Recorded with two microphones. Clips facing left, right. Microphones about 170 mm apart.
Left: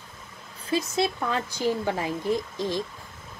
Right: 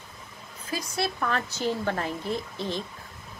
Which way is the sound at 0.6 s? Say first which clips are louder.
Left 7 dB; 25° left (ahead or behind).